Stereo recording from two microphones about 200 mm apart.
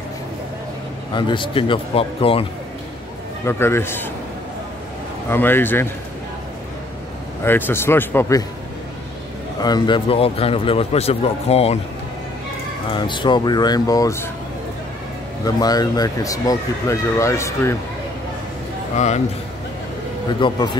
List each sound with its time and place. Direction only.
1.1 s speech: 25° left (ahead or behind)
3.4 s speech: 10° left (ahead or behind)
5.3 s speech: 10° left (ahead or behind)
7.4 s speech: 10° left (ahead or behind)
9.6 s speech: 20° left (ahead or behind)
12.9 s speech: 25° left (ahead or behind)
15.4 s speech: 20° left (ahead or behind)
18.9 s speech: 35° left (ahead or behind)
20.3 s speech: 25° left (ahead or behind)